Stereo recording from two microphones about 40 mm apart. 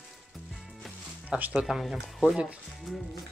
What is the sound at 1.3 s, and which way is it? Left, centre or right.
Speech, right.